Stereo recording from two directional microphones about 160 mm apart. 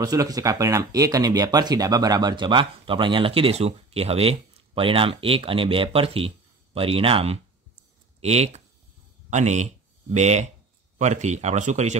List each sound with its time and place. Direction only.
0.0 s speech: 25° right (ahead or behind); by 12.0 s 45° right (ahead or behind)